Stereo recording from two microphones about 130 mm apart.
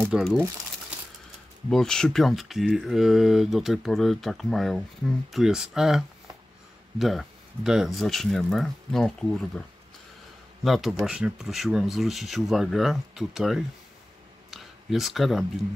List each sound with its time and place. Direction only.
0.1 s speech: 5° right (ahead or behind)
1.7 s speech: 5° left (ahead or behind)
10.6 s speech: centre (ahead or behind)
14.5 s a sound: centre (ahead or behind)